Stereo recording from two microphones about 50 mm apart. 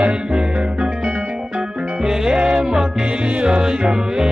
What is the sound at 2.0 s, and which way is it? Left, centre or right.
Music, centre.